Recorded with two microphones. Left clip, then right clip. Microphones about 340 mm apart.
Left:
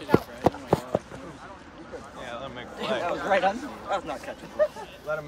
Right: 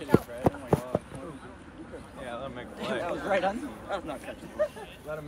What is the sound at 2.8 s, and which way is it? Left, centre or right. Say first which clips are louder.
Speech: left 4 dB; left.